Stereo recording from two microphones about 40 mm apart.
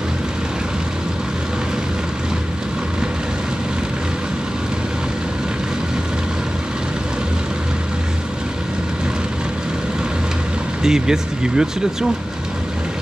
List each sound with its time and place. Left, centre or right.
10.8 s speech: centre